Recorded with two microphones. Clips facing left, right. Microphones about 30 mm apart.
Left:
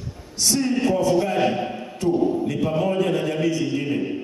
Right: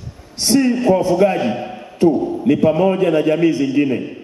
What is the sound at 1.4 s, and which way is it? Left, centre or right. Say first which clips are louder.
Speech: right 1 dB; centre.